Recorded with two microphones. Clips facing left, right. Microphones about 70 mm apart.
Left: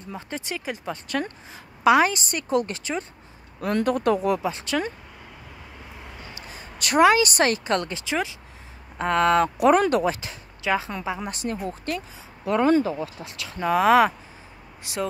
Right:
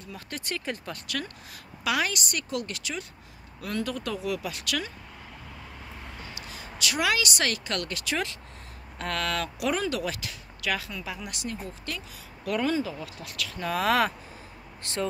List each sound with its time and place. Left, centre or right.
0.1 s speech: left
0.6 s speech: centre
1.9 s speech: left
3.6 s speech: left
4.4 s speech: left
6.4 s a woman's voice: left
11.1 s speech: left
12.4 s speech: left